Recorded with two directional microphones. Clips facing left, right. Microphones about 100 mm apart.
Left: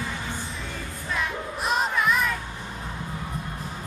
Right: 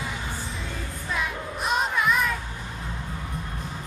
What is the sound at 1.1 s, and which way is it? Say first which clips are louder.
Crowd: left 1 dB; centre (ahead or behind).